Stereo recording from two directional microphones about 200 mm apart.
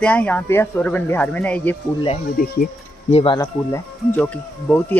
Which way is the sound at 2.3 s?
50° left (ahead or behind).